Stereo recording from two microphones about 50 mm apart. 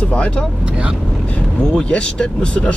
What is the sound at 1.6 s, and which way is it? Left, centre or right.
Speech, centre.